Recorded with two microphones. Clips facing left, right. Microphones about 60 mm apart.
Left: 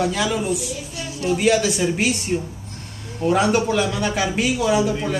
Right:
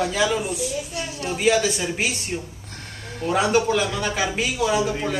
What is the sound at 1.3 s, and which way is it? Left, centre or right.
Speech, centre.